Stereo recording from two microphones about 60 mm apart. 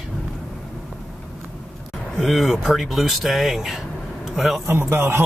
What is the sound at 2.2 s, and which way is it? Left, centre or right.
A man's voice, centre.